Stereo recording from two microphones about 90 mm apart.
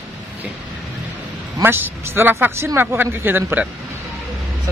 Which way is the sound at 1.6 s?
25° right (ahead or behind).